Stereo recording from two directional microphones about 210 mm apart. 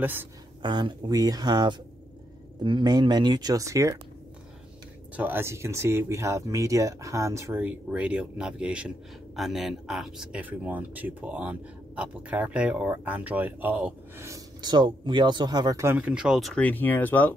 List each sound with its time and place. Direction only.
0.0 s speech: 10° right (ahead or behind)
0.6 s speech: 20° right (ahead or behind)
5.1 s speech: 10° right (ahead or behind); by 17.3 s 10° left (ahead or behind)